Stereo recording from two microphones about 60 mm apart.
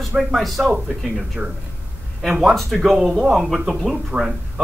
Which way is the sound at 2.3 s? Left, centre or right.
Centre.